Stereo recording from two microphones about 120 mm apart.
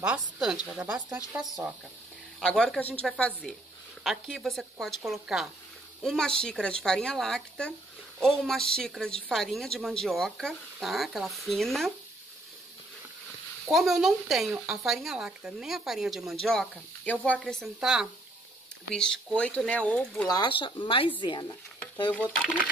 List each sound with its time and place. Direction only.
0.1 s speech: 5° right (ahead or behind)
2.4 s speech: 5° left (ahead or behind)
13.7 s speech: centre (ahead or behind)
18.9 s speech: 5° left (ahead or behind)
20.2 s speech: 40° left (ahead or behind)
22.1 s speech: 10° left (ahead or behind)